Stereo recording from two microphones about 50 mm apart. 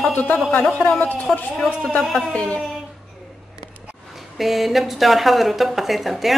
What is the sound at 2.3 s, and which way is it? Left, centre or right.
Speech, left.